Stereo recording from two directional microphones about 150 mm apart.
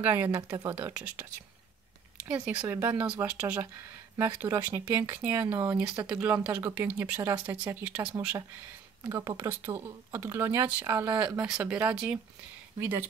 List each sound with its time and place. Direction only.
0.0 s speech: 10° right (ahead or behind)
2.4 s speech: 10° right (ahead or behind)
9.0 s speech: 25° right (ahead or behind); by 12.2 s 5° right (ahead or behind)